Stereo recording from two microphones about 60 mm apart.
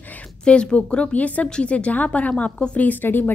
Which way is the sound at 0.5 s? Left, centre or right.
Centre.